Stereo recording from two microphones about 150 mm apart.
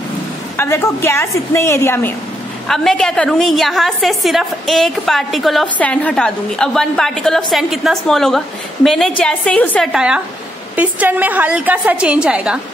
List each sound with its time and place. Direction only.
0.6 s a woman's voice: 15° left (ahead or behind)
2.7 s a woman's voice: 5° left (ahead or behind)
9.9 s a woman's voice: 5° right (ahead or behind)